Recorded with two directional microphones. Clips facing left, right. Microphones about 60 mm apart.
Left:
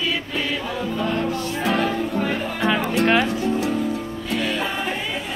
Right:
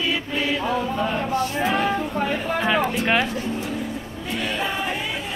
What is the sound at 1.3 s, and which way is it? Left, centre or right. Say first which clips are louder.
Music: right 2 dB; right.